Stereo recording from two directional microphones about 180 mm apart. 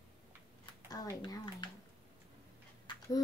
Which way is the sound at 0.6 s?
25° left (ahead or behind).